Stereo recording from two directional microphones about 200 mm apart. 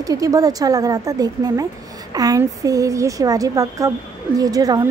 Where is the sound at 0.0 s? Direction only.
15° right (ahead or behind).